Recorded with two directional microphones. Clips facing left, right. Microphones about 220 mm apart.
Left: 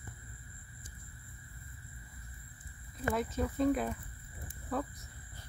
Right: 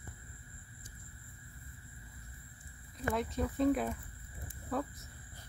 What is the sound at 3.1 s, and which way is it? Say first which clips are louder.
Speech: left 1 dB; centre (ahead or behind).